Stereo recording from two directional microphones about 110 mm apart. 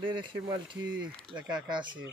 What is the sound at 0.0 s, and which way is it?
Speech, 45° right (ahead or behind).